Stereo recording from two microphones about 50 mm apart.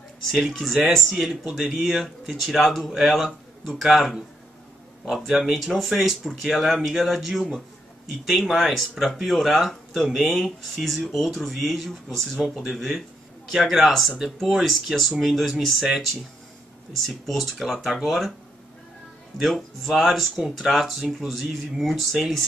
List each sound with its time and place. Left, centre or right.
0.3 s speech: centre
19.3 s speech: centre